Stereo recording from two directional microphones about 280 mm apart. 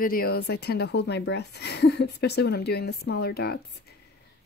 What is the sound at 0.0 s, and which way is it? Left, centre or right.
Speech, left.